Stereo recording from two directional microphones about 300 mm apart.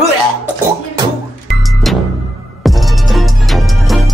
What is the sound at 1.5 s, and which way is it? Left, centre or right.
Music, centre.